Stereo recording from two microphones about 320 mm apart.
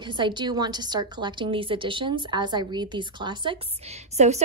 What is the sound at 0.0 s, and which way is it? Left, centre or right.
A woman's voice, centre.